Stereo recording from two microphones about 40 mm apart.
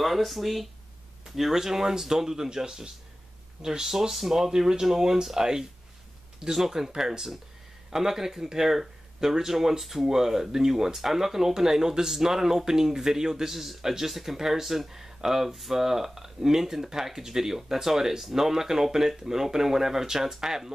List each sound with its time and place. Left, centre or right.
0.0 s speech: centre